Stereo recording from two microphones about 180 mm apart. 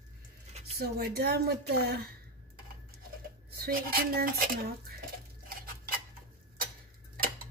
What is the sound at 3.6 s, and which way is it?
Speech, 55° right (ahead or behind).